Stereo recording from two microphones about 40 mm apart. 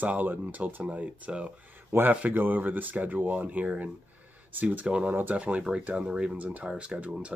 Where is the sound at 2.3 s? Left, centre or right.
Right.